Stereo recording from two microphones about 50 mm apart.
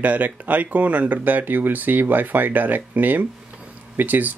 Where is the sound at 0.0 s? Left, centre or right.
Right.